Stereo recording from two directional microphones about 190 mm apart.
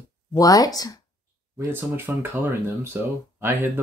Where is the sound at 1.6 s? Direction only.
10° right (ahead or behind).